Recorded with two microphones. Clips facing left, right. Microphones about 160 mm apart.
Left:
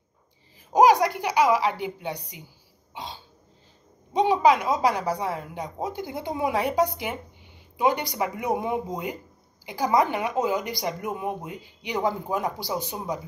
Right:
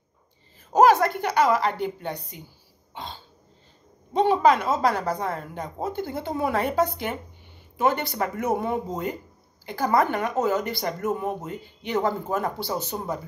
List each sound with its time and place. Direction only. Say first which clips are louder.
0.7 s speech: even; 15° left (ahead or behind)
2.9 s cough: even; 10° left (ahead or behind)
4.1 s speech: right 1 dB; 15° left (ahead or behind)